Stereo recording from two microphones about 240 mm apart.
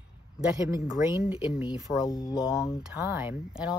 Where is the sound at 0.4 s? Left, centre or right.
Centre.